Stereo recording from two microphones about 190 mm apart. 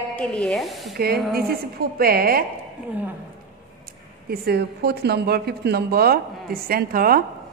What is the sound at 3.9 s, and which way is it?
Speech, 55° right (ahead or behind).